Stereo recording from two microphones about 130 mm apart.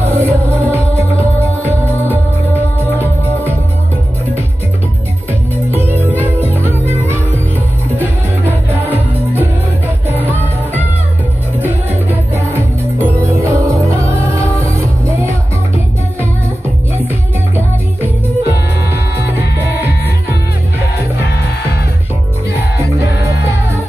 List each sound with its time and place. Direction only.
0.0 s music: 15° right (ahead or behind)
5.7 s music: 15° right (ahead or behind)
8.5 s music: 15° right (ahead or behind)
10.0 s music: 15° right (ahead or behind)
11.6 s music: 15° right (ahead or behind)